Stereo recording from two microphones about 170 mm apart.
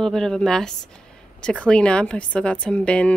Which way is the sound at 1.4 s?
5° left (ahead or behind).